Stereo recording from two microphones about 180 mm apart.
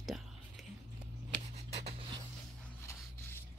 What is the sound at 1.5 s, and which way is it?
Writing, 35° right (ahead or behind).